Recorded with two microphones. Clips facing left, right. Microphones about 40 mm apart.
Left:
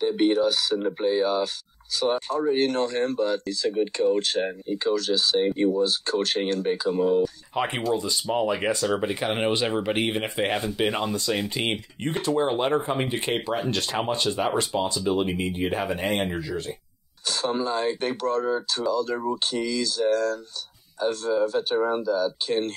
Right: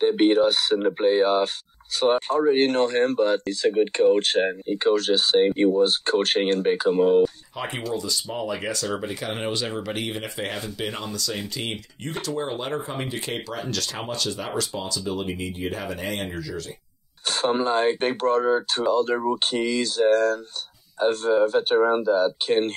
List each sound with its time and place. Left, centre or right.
0.0 s speech: right
7.5 s speech: left
17.3 s speech: right